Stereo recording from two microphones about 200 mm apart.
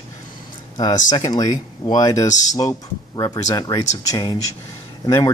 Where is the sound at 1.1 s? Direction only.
20° left (ahead or behind).